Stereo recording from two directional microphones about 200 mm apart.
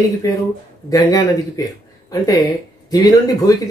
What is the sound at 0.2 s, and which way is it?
Speech, 20° left (ahead or behind).